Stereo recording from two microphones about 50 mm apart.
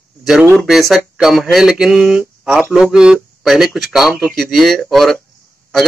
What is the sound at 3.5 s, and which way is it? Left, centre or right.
Speech, centre.